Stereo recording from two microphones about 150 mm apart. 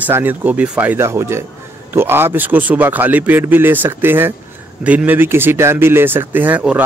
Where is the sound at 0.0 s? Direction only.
10° right (ahead or behind).